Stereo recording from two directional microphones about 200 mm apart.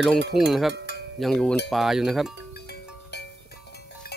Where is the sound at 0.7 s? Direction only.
60° right (ahead or behind).